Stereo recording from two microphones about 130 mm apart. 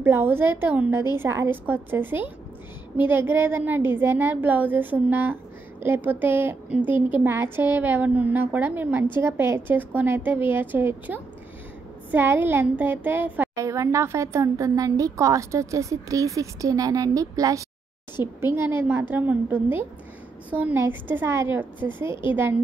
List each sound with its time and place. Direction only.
0.0 s a woman's voice: 15° right (ahead or behind)